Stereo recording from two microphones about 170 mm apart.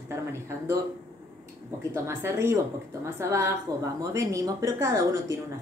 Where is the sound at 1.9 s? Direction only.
15° right (ahead or behind).